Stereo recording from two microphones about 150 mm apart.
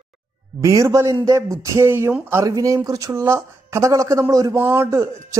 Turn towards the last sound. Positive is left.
turn(degrees=-20)  # may be behind; listen again after turning